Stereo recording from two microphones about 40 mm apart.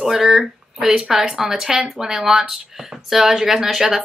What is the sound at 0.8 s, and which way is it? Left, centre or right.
A woman's voice, centre.